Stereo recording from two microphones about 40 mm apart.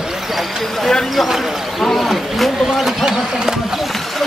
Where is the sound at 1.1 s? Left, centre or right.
Centre.